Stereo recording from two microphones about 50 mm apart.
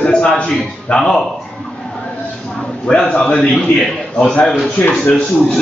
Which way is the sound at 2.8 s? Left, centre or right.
Centre.